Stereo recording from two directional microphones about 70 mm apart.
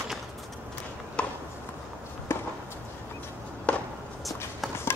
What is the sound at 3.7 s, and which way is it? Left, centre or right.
Walk, centre.